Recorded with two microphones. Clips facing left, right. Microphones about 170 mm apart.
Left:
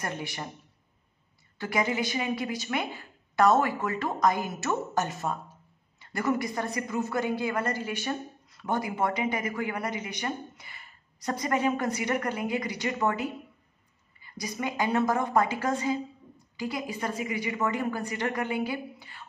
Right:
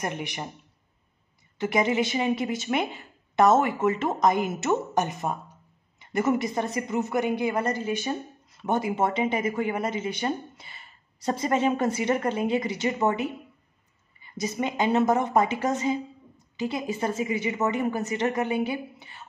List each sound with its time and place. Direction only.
0.0 s a man's voice: 15° right (ahead or behind)
1.6 s speech: 20° right (ahead or behind)